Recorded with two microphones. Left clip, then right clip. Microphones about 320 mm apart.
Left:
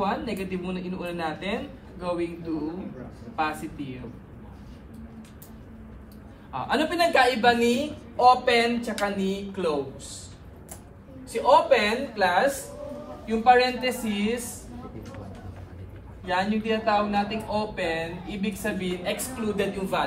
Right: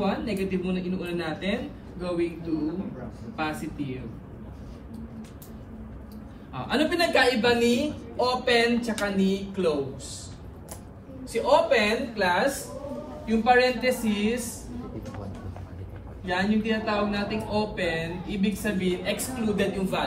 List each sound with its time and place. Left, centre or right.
0.0 s speech: centre
3.3 s speech: centre
6.5 s speech: centre
11.3 s speech: centre
16.3 s speech: centre